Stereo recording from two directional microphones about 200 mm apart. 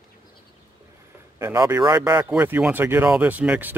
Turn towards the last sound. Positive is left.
turn(degrees=-10)  # may be behind; listen again after turning